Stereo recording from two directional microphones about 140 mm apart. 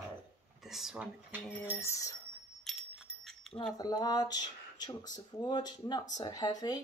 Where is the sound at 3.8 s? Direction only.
25° left (ahead or behind).